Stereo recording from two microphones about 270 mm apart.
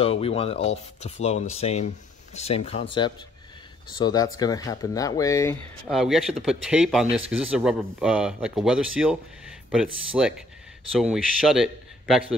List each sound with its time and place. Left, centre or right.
0.0 s speech: left
4.0 s speech: centre
5.9 s speech: centre